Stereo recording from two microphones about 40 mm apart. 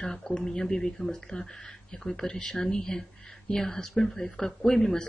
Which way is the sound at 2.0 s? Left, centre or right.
Centre.